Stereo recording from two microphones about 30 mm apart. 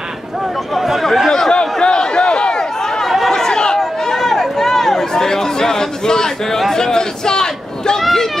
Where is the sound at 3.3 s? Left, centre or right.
Centre.